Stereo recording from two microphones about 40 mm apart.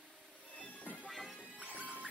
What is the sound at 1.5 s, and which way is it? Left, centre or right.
Music, right.